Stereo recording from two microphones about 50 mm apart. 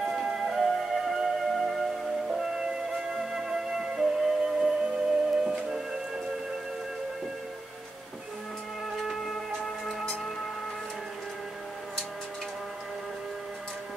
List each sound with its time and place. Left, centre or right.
0.0 s music: centre
8.9 s music: centre